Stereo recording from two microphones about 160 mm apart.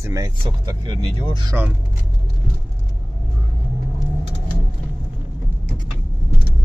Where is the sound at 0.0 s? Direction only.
20° right (ahead or behind).